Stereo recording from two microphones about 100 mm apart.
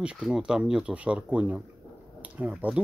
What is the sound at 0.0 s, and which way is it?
Speech, 10° right (ahead or behind).